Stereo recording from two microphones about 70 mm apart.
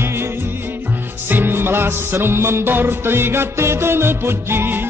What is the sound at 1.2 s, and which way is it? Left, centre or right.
Music, right.